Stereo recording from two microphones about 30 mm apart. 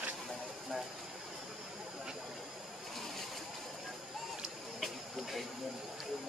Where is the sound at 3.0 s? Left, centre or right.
Centre.